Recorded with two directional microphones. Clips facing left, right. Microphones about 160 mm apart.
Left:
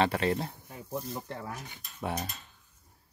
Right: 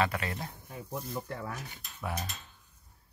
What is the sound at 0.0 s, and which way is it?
Speech, 30° left (ahead or behind).